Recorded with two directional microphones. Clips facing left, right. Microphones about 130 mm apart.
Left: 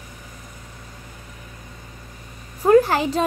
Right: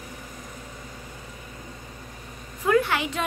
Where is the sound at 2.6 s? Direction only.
35° left (ahead or behind).